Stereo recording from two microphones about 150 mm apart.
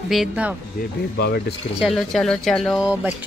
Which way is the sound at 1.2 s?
90° left.